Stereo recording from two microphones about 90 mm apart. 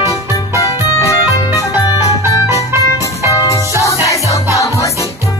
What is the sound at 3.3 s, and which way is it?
Music, 35° left (ahead or behind).